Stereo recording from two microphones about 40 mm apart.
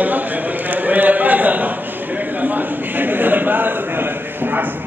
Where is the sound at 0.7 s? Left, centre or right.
Right.